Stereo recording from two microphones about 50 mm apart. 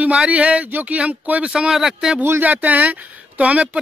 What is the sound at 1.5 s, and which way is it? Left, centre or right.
Speech, centre.